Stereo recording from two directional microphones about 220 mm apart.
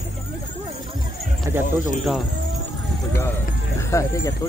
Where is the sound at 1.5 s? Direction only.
10° right (ahead or behind).